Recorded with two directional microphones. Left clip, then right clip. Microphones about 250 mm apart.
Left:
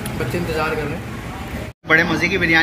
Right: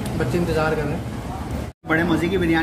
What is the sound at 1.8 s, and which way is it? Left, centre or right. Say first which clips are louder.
Speech: left 5 dB; centre.